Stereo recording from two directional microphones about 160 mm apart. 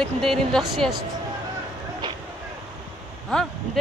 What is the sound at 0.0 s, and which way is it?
Speech, 5° left (ahead or behind).